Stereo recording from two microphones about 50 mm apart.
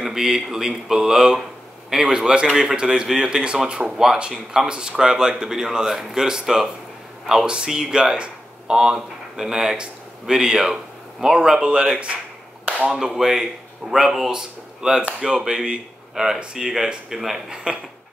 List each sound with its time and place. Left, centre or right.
0.0 s speech: centre
12.9 s speech: centre